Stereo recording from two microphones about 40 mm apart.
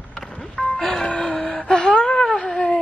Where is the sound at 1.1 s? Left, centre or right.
Centre.